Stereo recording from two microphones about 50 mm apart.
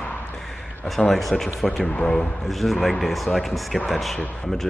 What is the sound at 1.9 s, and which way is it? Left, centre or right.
Speech, left.